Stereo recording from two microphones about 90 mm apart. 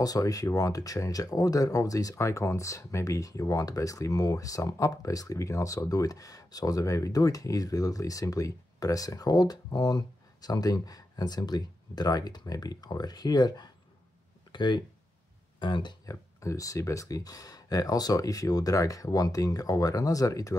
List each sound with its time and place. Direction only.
0.0 s speech: 40° left (ahead or behind)
14.5 s a sound: 55° left (ahead or behind)
15.6 s speech: 60° left (ahead or behind)
16.1 s speech: 35° left (ahead or behind)